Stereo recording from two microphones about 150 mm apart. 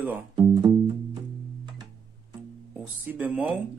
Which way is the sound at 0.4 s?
30° right (ahead or behind).